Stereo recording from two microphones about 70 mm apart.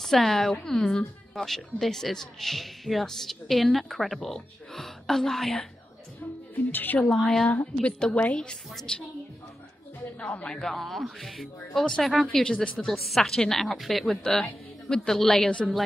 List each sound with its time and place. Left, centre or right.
0.0 s a woman's voice: centre
6.5 s a woman's voice: left
7.8 s a woman's voice: centre
10.2 s a woman's voice: centre